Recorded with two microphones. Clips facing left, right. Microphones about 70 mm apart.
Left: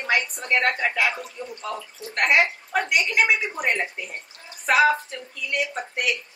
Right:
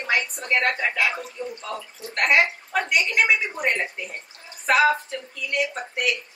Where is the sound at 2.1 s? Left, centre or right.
Centre.